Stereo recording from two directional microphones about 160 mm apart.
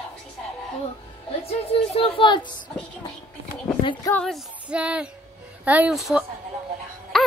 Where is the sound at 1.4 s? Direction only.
35° left (ahead or behind).